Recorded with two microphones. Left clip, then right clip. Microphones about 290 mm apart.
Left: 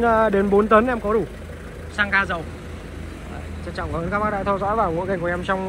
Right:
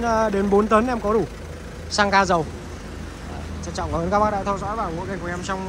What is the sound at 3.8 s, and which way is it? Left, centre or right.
Speech, centre.